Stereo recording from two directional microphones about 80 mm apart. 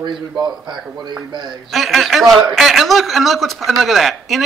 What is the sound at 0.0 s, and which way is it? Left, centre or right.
A man's voice, right.